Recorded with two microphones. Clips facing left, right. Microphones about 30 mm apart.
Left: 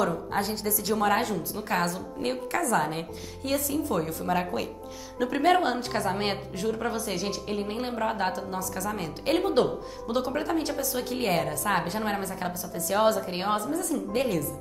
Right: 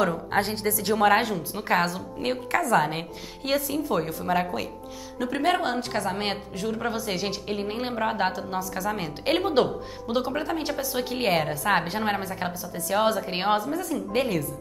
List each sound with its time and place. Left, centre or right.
0.0 s a woman's voice: right
4.1 s a woman's voice: centre
6.7 s a woman's voice: centre
10.1 s a woman's voice: centre
10.7 s a woman's voice: right
12.8 s a woman's voice: centre
13.1 s a woman's voice: right
14.1 s a woman's voice: centre